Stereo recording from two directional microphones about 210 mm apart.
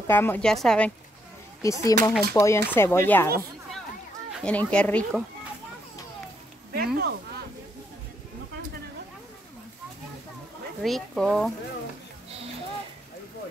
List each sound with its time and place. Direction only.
0.0 s speech: 10° left (ahead or behind)
1.6 s speech: 15° left (ahead or behind)
4.4 s speech: 5° left (ahead or behind)
6.7 s a sound: 50° right (ahead or behind)
10.8 s speech: centre (ahead or behind)